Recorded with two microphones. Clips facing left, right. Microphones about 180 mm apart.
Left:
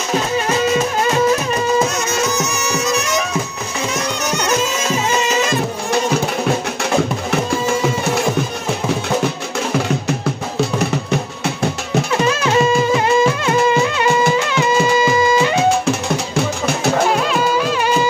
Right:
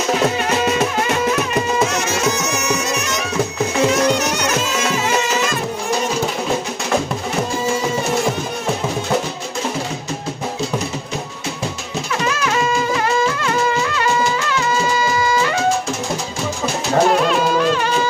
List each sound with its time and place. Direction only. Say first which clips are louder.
10.8 s music: left 6 dB; 65° left (ahead or behind)
12.3 s music: left 3 dB; 25° left (ahead or behind)
17.1 s music: right 1 dB; centre (ahead or behind)